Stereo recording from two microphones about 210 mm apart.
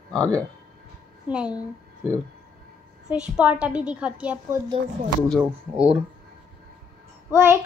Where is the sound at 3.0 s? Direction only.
5° right (ahead or behind).